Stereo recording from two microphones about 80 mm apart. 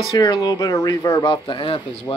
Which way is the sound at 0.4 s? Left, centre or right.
Left.